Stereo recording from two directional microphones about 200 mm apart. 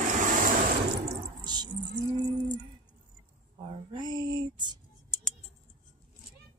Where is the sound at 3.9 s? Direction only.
20° right (ahead or behind).